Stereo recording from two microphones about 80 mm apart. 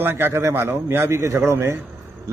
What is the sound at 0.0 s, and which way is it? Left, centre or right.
A man's voice, right.